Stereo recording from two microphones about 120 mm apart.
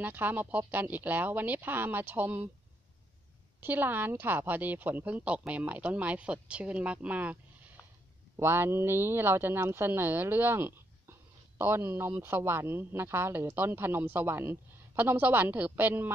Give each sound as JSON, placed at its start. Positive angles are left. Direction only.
{"t": 0.0, "sound": "a woman's voice", "side_deg": -15}
{"t": 3.6, "sound": "a woman's voice", "side_deg": -15}
{"t": 8.4, "sound": "speech", "side_deg": -20}